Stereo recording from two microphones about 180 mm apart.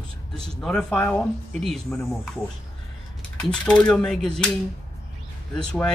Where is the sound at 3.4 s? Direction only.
5° left (ahead or behind).